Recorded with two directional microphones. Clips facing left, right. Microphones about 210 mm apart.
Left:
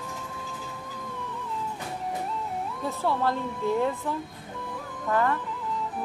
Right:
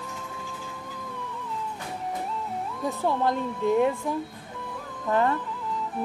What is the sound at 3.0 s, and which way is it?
A woman's voice, 15° right (ahead or behind).